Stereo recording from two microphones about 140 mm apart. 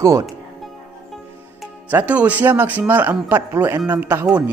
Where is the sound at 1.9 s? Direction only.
10° right (ahead or behind).